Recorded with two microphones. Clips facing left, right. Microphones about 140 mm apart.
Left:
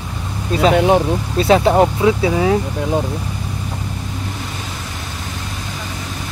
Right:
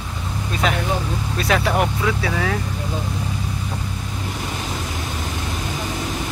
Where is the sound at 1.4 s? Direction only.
25° left (ahead or behind).